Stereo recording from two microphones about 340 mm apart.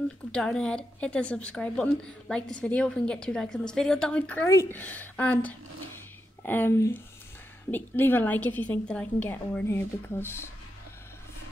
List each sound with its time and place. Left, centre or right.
0.3 s speech: centre